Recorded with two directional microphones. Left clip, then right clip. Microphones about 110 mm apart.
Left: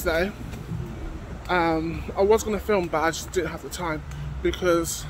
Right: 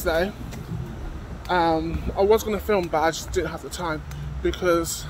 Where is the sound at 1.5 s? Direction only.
20° left (ahead or behind).